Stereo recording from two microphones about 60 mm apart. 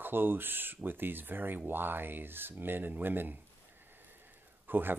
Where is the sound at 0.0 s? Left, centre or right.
Right.